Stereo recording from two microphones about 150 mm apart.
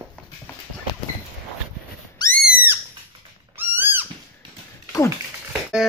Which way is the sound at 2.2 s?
30° left (ahead or behind).